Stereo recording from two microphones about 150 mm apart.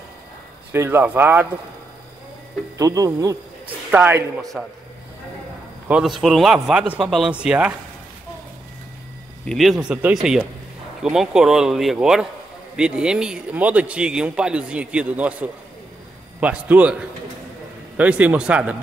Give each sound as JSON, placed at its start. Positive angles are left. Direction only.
{"t": 0.7, "sound": "a man's voice", "side_deg": -15}
{"t": 2.8, "sound": "speech", "side_deg": -20}
{"t": 3.9, "sound": "speech", "side_deg": -10}
{"t": 4.4, "sound": "speech", "side_deg": 0}
{"t": 5.9, "sound": "speech", "side_deg": -5}
{"t": 9.4, "sound": "a man's voice", "side_deg": 0}